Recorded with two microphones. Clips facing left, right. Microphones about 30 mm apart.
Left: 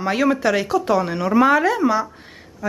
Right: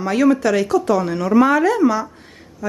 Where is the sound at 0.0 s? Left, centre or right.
Centre.